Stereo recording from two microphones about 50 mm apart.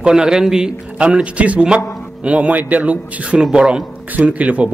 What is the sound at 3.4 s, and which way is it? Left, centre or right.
Speech, centre.